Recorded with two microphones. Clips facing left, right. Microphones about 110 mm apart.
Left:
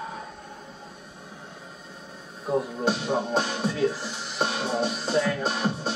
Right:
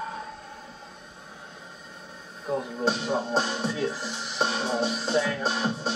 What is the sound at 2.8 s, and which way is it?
Music, 5° left (ahead or behind).